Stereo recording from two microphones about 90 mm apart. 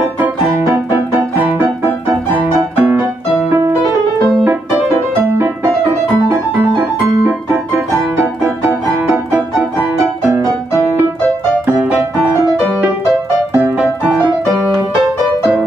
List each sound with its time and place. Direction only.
2.7 s music: 25° right (ahead or behind)
8.6 s music: 20° right (ahead or behind)
11.6 s music: 15° right (ahead or behind)
13.5 s music: 20° right (ahead or behind)